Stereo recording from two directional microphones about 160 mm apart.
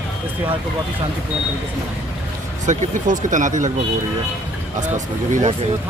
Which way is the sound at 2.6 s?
55° right (ahead or behind).